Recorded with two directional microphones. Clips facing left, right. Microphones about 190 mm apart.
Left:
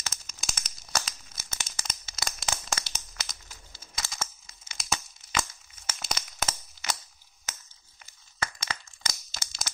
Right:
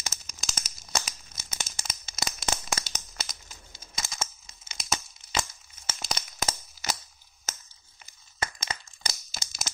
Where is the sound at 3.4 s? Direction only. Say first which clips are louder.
Right 1 dB; 20° right (ahead or behind).